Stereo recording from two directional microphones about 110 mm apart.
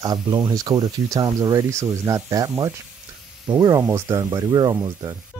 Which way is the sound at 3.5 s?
10° right (ahead or behind).